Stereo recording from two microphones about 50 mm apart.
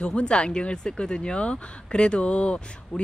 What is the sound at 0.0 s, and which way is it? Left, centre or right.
Speech, centre.